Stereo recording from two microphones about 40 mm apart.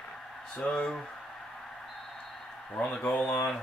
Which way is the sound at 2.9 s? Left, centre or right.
Left.